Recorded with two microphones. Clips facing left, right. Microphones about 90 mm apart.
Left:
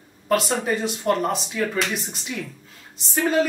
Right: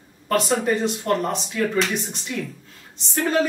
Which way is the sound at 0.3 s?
Centre (ahead or behind).